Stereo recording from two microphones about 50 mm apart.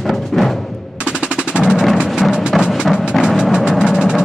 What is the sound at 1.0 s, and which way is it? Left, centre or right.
Machine gun, centre.